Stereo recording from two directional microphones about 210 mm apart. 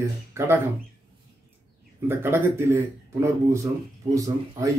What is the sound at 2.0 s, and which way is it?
Speech, 10° right (ahead or behind).